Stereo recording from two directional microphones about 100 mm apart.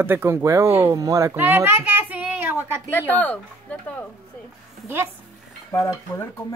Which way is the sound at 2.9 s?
15° left (ahead or behind).